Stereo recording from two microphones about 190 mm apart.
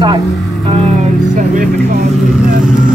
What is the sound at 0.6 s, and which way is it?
Speech, 35° right (ahead or behind).